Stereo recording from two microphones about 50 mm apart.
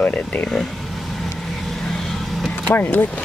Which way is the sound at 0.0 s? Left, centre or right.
Left.